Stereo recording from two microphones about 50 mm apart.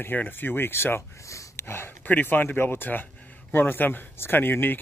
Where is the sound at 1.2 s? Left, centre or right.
Left.